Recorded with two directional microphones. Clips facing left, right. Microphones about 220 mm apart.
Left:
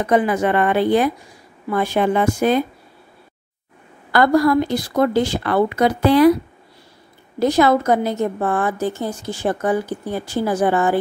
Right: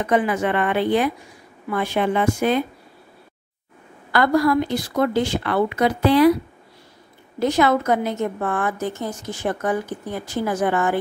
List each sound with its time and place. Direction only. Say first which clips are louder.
0.0 s a woman's voice: left 3 dB; 40° left (ahead or behind)
4.1 s a woman's voice: left 3 dB; 40° left (ahead or behind)
7.3 s a woman's voice: left 3 dB; 35° left (ahead or behind)